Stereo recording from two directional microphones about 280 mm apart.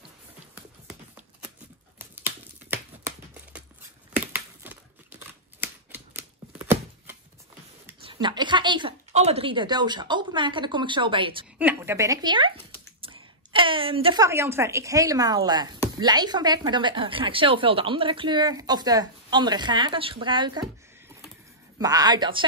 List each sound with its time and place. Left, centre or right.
2.0 s a sound: centre
4.2 s typewriter: centre
8.0 s a woman's voice: centre
11.5 s a woman's voice: centre
21.7 s a woman's voice: centre